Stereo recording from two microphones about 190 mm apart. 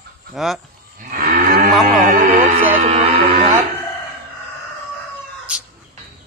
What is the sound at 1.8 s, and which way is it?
Speech, 45° right (ahead or behind).